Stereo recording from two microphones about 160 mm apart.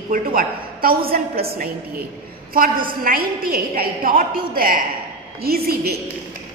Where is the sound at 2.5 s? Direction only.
60° right (ahead or behind).